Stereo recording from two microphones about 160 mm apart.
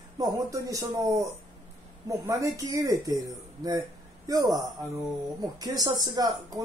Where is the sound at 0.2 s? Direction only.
20° right (ahead or behind).